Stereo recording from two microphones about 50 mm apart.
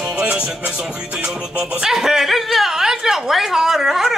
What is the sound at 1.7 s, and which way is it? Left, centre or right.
Speech, centre.